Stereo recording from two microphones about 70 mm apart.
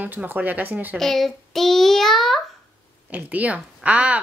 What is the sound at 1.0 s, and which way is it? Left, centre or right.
A child's voice, centre.